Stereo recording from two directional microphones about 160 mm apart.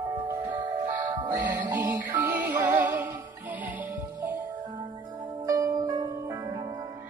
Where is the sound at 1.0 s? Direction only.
25° right (ahead or behind).